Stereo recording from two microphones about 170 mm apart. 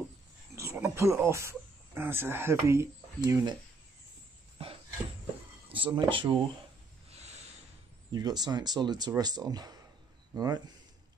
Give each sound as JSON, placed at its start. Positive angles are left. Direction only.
{"t": 0.6, "sound": "speech", "side_deg": -15}
{"t": 5.7, "sound": "speech", "side_deg": -30}
{"t": 7.1, "sound": "a sound", "side_deg": -40}
{"t": 8.1, "sound": "speech", "side_deg": -25}